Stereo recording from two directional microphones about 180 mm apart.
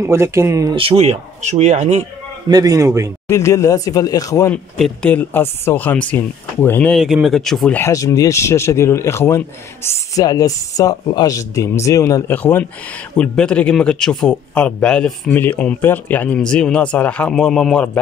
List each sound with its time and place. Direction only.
0.0 s speech: 15° right (ahead or behind)
0.7 s speech: 35° right (ahead or behind)
2.5 s speech: 20° right (ahead or behind)
3.3 s speech: 15° left (ahead or behind)
4.5 s a man's voice: 5° left (ahead or behind)